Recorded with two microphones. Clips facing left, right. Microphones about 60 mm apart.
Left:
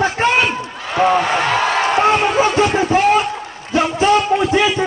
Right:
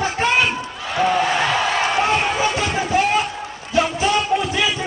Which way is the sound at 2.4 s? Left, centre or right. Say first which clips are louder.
Left 6 dB; left.